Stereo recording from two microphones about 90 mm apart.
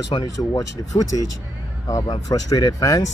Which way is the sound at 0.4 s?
40° left (ahead or behind).